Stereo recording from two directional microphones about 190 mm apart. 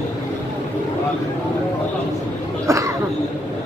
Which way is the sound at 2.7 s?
15° right (ahead or behind).